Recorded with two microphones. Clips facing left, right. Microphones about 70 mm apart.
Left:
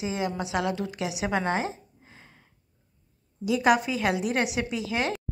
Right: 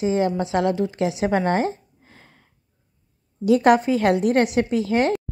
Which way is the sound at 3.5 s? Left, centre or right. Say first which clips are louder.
Right 7 dB; right.